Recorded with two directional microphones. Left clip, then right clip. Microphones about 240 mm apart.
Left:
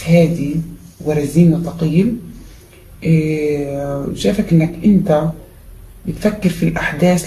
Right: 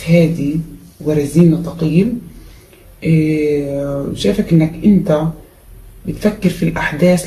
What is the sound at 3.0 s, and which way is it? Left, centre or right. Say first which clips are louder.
Mantra: right 2 dB; centre.